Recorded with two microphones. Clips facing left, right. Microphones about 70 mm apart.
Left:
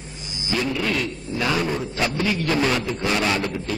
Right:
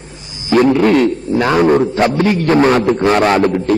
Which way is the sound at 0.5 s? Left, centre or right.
Right.